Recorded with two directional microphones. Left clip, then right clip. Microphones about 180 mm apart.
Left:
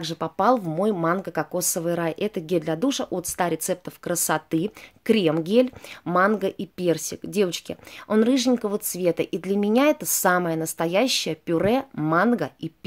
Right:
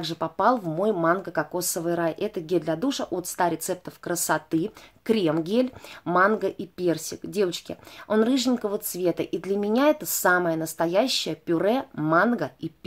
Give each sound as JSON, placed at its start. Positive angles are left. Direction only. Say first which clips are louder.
{"t": 0.0, "sound": "speech", "louder": "left 1 dB", "side_deg": 30}